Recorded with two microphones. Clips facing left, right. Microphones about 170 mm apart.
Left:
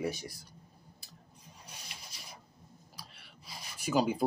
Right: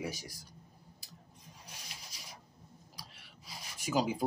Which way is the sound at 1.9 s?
65° left (ahead or behind).